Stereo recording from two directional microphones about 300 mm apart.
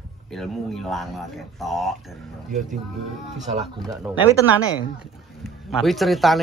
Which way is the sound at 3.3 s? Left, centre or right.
Right.